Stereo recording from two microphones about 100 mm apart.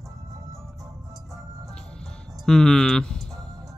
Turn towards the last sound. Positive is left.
turn(degrees=5)  # may be behind; listen again after turning